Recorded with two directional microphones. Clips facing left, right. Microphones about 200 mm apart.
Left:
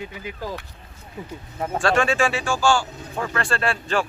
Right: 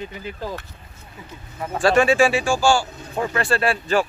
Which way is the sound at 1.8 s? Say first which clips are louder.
Right 5 dB; 5° right (ahead or behind).